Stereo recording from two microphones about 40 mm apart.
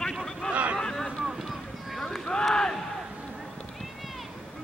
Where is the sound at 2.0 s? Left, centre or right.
Centre.